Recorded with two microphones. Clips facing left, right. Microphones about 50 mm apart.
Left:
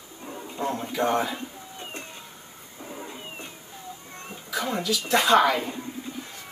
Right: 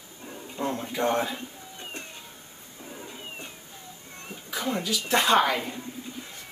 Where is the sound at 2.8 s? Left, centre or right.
Centre.